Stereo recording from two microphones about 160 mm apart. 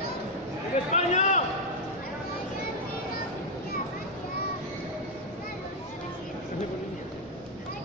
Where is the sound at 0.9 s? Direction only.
45° left (ahead or behind).